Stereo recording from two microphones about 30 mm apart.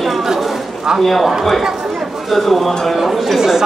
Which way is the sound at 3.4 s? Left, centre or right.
Centre.